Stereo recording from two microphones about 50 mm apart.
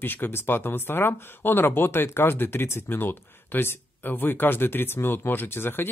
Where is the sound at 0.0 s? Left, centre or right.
Left.